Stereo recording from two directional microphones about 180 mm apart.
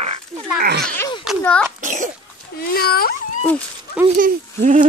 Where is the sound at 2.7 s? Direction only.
55° left (ahead or behind).